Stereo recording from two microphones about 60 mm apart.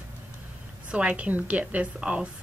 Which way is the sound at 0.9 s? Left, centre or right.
Centre.